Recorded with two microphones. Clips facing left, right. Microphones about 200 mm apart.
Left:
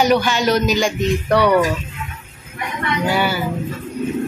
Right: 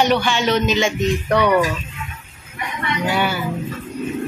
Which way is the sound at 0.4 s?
40° left (ahead or behind).